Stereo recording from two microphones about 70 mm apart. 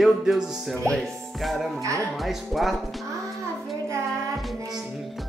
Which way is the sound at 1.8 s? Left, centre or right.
Right.